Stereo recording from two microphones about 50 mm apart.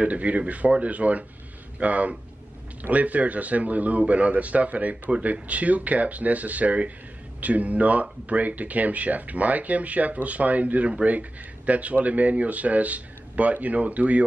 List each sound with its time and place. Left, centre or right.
0.0 s speech: right